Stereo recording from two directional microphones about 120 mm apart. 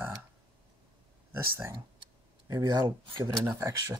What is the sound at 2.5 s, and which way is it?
Speech, 35° right (ahead or behind).